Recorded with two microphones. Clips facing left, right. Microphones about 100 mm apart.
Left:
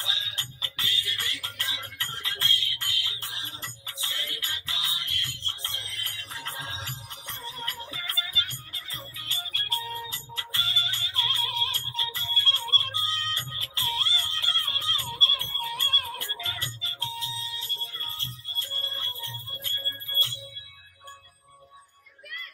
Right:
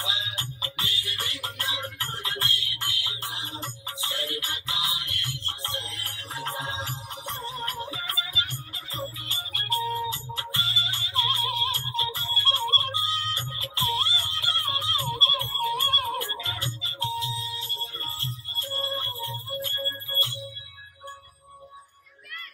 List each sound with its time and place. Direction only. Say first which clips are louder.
0.0 s music: right 4 dB; 25° right (ahead or behind)